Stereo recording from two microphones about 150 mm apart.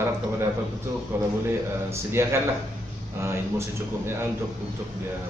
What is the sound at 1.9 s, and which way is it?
A man's voice, 15° right (ahead or behind).